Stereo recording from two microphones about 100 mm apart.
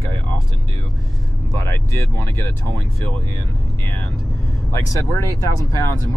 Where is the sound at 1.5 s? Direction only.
30° left (ahead or behind).